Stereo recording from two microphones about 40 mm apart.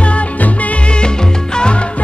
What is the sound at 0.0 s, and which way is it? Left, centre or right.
Music, left.